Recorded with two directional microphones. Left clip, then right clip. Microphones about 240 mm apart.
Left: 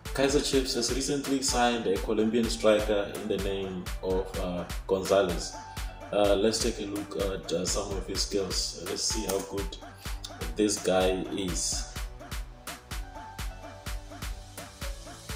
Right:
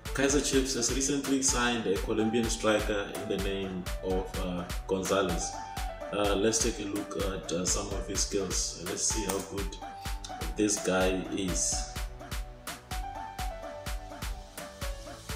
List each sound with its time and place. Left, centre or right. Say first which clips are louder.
0.7 s speech: left 1 dB; centre
12.6 s music: right 4 dB; centre